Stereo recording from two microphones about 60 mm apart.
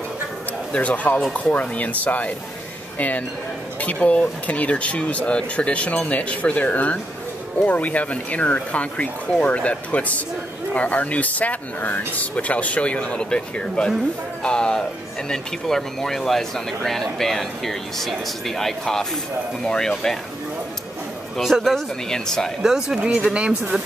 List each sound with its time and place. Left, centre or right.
0.7 s speech: left; by 20.2 s centre
21.4 s speech: centre
22.1 s speech: centre
22.6 s speech: centre